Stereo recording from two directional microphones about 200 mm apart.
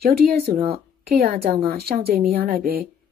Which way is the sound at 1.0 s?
50° right (ahead or behind).